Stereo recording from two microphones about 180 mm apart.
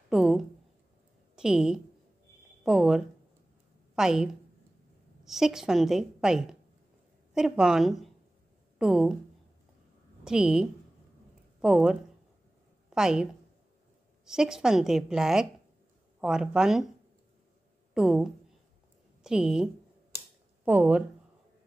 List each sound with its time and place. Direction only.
0.1 s a woman's voice: centre (ahead or behind)
10.2 s a woman's voice: 5° right (ahead or behind)
17.9 s a woman's voice: centre (ahead or behind)